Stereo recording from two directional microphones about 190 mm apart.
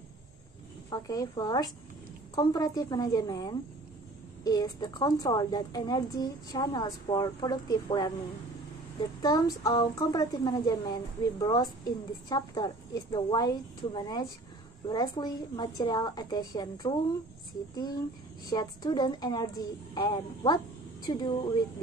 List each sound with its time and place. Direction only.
0.8 s a woman's voice: 20° left (ahead or behind)
9.2 s a woman's voice: 20° left (ahead or behind)